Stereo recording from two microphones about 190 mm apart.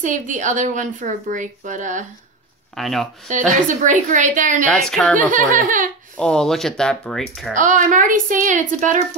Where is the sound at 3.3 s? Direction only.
40° right (ahead or behind).